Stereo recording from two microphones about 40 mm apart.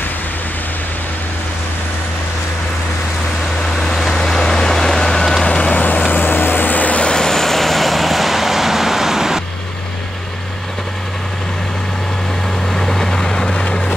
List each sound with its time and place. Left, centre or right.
3.7 s vehicle: centre
5.4 s vehicle: left
5.8 s vehicle: left
7.0 s vehicle: centre
12.7 s vehicle: centre
13.5 s vehicle: left